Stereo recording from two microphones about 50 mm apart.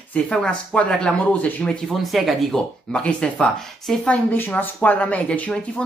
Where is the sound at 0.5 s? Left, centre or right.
Centre.